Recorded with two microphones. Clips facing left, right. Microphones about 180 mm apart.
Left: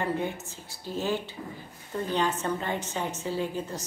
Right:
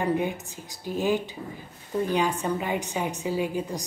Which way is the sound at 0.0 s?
15° right (ahead or behind).